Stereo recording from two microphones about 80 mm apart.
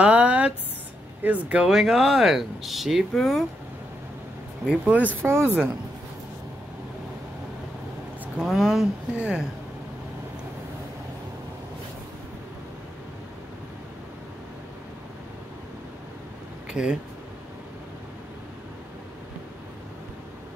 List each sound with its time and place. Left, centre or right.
0.0 s a sound: centre
1.2 s speech: centre
4.6 s speech: centre
8.4 s speech: centre
16.7 s speech: centre